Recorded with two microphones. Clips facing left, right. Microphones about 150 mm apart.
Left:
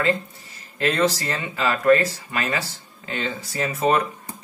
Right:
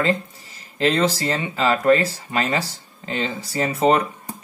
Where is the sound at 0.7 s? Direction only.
30° right (ahead or behind).